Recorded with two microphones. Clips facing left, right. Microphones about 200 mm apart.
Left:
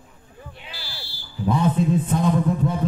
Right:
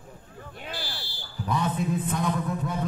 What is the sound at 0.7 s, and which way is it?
Fire alarm, 55° right (ahead or behind).